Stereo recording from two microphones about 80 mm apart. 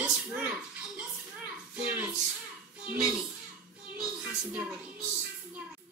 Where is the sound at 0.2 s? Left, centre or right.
Centre.